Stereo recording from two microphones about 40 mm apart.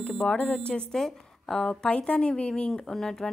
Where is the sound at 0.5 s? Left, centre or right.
Left.